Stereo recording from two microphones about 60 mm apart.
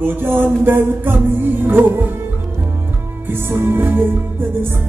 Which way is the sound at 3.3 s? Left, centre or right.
Right.